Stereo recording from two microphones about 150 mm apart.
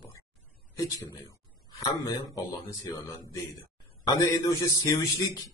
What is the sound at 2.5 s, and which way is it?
Speech, 20° left (ahead or behind).